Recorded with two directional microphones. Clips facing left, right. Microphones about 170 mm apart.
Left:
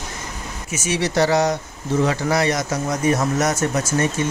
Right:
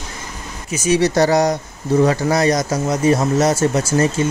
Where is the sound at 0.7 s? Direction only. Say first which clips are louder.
Right 7 dB; 35° right (ahead or behind).